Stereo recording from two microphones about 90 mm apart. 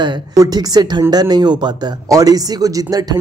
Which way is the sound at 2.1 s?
40° right (ahead or behind).